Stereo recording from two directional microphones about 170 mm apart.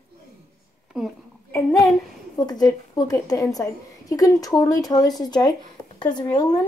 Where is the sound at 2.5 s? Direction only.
25° left (ahead or behind).